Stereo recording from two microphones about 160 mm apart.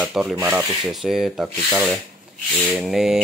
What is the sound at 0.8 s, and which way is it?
Speech, centre (ahead or behind).